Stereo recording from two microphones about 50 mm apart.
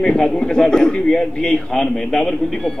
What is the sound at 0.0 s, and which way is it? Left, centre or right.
A man's voice, centre.